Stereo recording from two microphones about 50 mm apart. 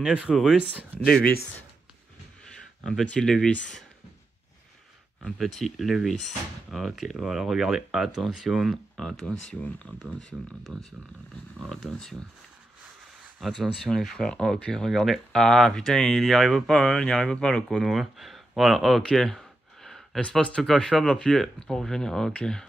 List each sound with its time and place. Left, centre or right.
0.0 s speech: centre
0.3 s speech: centre
2.8 s speech: centre
5.4 s speech: centre
8.9 s speech: centre
10.7 s speech: centre
13.4 s speech: centre
13.8 s speech: centre
17.6 s speech: centre
19.0 s a sound: centre
20.6 s speech: centre